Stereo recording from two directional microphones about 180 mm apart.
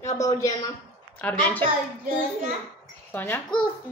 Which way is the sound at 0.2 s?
20° left (ahead or behind).